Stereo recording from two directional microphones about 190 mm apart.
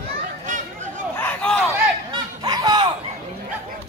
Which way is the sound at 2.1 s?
20° right (ahead or behind).